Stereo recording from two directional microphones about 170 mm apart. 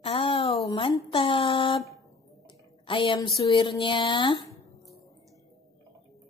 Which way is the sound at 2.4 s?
30° left (ahead or behind).